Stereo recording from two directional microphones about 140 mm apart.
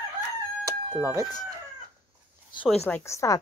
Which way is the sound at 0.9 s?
15° right (ahead or behind).